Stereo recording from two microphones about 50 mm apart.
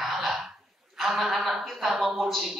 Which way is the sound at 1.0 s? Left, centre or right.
Centre.